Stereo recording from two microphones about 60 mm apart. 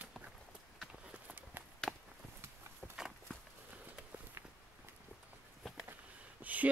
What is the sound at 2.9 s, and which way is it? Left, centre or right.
Horse, centre.